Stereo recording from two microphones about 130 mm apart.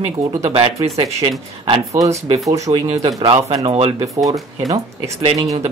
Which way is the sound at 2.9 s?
50° right (ahead or behind).